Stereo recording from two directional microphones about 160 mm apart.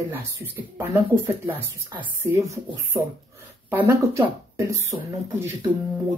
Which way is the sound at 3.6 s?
10° right (ahead or behind).